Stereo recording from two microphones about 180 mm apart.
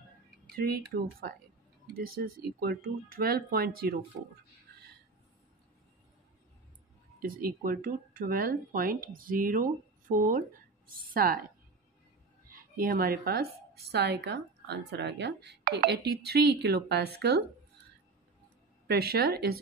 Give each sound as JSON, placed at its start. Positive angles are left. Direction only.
{"t": 0.5, "sound": "speech", "side_deg": -60}
{"t": 7.2, "sound": "speech", "side_deg": -55}
{"t": 12.4, "sound": "a woman's voice", "side_deg": -55}
{"t": 18.9, "sound": "speech", "side_deg": -60}